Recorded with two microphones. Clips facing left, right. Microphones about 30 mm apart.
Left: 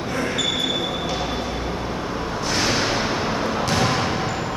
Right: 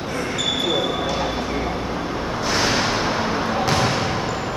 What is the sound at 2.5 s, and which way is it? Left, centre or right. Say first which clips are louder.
Whip: right 1 dB; centre.